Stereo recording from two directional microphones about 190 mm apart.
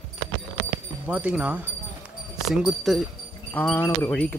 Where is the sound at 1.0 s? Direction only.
5° right (ahead or behind).